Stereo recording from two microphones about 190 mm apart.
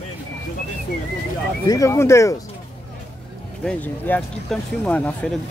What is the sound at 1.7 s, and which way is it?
Speech, 15° left (ahead or behind).